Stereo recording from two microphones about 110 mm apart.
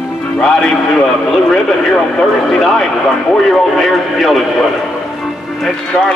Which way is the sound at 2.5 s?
Centre (ahead or behind).